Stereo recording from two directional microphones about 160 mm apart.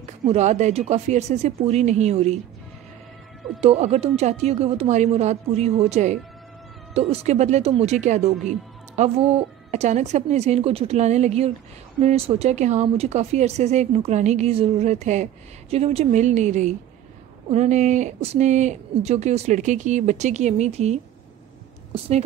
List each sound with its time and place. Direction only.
0.2 s speech: 45° right (ahead or behind)
3.6 s speech: 40° right (ahead or behind)